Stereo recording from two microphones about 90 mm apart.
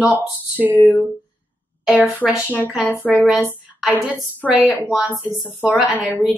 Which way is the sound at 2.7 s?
10° right (ahead or behind).